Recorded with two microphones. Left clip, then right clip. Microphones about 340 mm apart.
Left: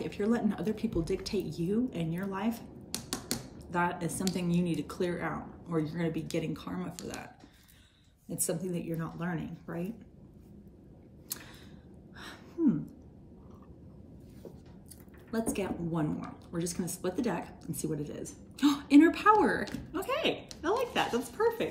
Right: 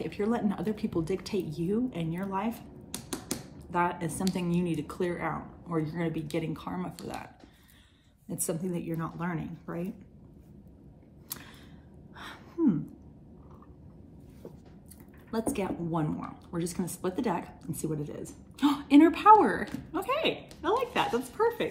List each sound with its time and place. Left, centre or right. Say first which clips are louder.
0.0 s a woman's voice: right 1 dB; centre
2.9 s a sound: left 1 dB; centre
3.7 s a woman's voice: right 2 dB; centre
8.3 s a woman's voice: right 1 dB; centre
12.2 s gasp: right 2 dB; centre
15.4 s a woman's voice: right 3 dB; centre